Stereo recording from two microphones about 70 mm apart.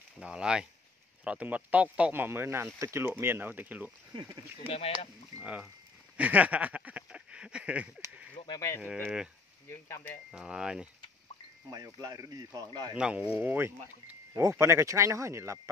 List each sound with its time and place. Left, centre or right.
0.2 s speech: centre
2.1 s speech: right
5.4 s speech: centre
6.1 s a sound: right
8.5 s speech: left
8.9 s speech: centre
9.7 s speech: left
10.3 s speech: centre
11.7 s speech: right
12.9 s speech: centre
13.4 s speech: right
14.4 s speech: right